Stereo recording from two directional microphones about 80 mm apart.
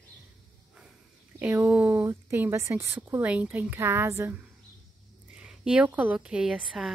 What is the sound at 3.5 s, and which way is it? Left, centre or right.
Speech, right.